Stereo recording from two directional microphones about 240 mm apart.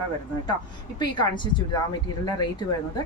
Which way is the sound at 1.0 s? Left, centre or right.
Centre.